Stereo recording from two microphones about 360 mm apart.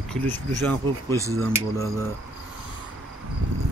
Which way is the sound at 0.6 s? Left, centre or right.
Centre.